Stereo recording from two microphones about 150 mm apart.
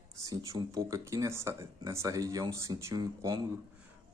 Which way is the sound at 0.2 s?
20° right (ahead or behind).